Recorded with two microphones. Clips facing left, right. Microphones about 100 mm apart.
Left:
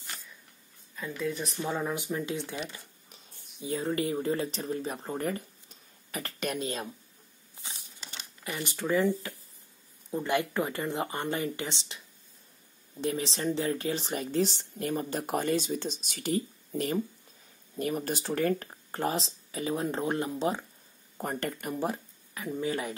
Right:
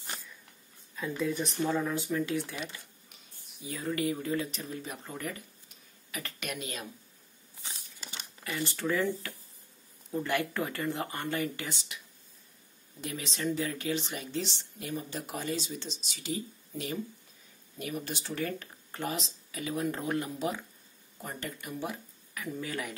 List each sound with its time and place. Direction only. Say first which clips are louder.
0.9 s speech: right 1 dB; centre (ahead or behind)
1.6 s speech: right 1 dB; 15° left (ahead or behind)
3.6 s speech: left 2 dB; 30° left (ahead or behind)
8.5 s speech: left 1 dB; 15° left (ahead or behind)
13.0 s speech: left 4 dB; 30° left (ahead or behind)
21.2 s speech: left 7 dB; 55° left (ahead or behind)
22.3 s speech: left 5 dB; 25° left (ahead or behind)